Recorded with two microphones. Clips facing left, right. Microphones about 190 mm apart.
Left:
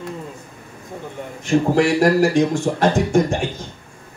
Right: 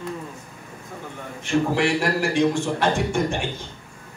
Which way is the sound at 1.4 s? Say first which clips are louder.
Left 5 dB; 40° left (ahead or behind).